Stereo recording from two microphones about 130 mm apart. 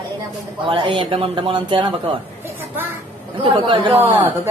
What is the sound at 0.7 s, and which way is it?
Speech, 40° right (ahead or behind).